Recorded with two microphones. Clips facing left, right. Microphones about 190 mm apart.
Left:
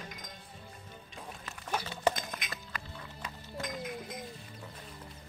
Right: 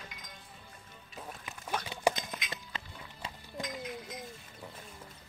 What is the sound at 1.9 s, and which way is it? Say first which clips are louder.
Clip-clop: right 1 dB; 15° right (ahead or behind).